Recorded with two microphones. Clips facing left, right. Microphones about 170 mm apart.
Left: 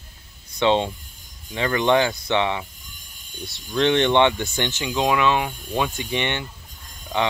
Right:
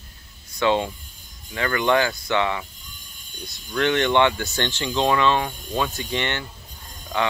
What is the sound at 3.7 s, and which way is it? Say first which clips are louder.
Speech: left 2 dB; 20° left (ahead or behind).